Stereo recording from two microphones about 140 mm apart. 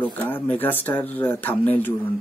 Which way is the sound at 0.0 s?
10° left (ahead or behind).